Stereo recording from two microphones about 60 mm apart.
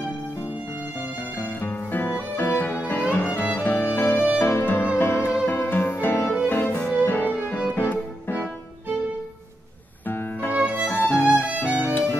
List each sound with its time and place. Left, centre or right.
1.4 s music: left
10.0 s music: left
10.5 s music: right
11.0 s music: left
11.3 s music: right
11.6 s music: left